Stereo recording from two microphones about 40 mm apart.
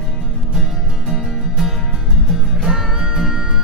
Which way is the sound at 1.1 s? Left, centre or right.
Centre.